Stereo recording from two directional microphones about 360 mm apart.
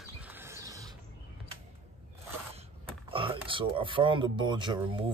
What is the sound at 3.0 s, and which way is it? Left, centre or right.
Speech, centre.